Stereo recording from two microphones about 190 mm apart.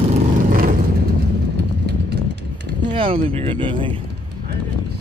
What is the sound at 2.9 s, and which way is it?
Speech, 30° right (ahead or behind).